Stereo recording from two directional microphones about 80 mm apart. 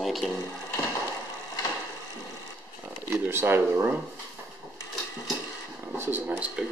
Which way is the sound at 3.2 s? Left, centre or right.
Right.